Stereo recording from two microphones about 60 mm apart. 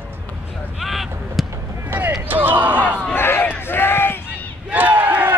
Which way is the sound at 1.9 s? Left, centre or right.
Right.